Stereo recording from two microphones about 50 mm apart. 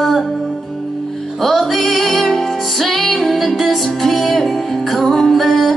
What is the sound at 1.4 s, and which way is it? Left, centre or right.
Music, centre.